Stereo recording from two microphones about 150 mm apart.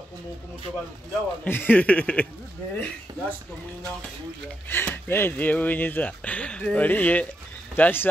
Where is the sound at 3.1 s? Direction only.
30° right (ahead or behind).